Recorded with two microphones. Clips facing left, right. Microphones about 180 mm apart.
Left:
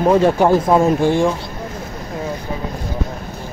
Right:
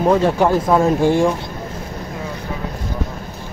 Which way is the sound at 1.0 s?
10° right (ahead or behind).